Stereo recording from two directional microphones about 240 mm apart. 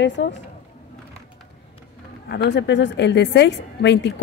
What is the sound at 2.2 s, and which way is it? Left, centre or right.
A woman's voice, left.